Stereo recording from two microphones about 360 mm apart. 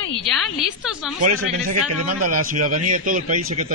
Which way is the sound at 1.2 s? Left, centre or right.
Right.